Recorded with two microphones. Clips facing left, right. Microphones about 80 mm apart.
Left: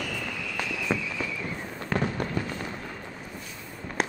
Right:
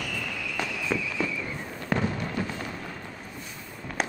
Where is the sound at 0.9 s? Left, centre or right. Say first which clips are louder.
Left 1 dB; centre.